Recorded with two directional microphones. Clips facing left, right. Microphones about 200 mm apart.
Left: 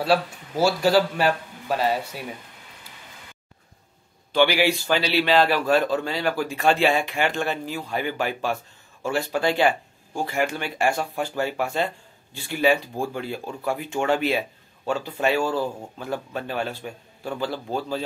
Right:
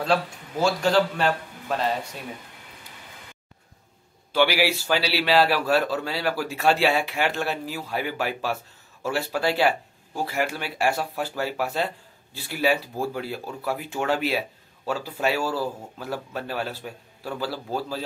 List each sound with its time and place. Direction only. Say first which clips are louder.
0.0 s a man's voice: left 2 dB; 5° left (ahead or behind)
4.3 s a man's voice: left 2 dB; 5° right (ahead or behind)